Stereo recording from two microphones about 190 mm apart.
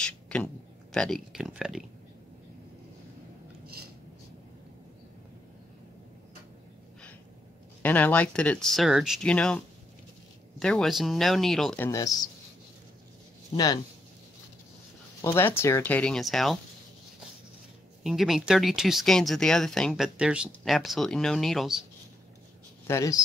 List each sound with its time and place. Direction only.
0.0 s a sound: 5° left (ahead or behind)
0.9 s speech: 5° left (ahead or behind)
7.8 s speech: 10° left (ahead or behind)
10.6 s speech: 5° left (ahead or behind); by 12.3 s 20° left (ahead or behind)
15.2 s speech: 10° left (ahead or behind)
18.0 s speech: centre (ahead or behind)
22.8 s speech: 15° left (ahead or behind)